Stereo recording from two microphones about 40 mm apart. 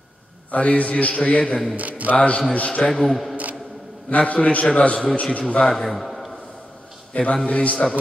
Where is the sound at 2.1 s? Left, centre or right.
Left.